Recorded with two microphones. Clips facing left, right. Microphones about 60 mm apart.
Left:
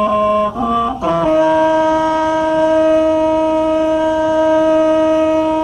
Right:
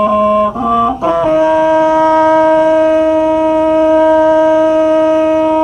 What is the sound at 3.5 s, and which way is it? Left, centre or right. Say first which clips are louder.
Shofar: right 4 dB; right.